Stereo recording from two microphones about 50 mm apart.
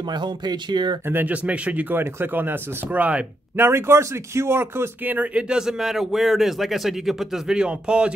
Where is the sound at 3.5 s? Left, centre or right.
Right.